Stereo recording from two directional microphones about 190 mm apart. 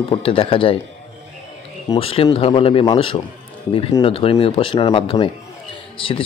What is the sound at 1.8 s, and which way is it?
Speech, 30° left (ahead or behind).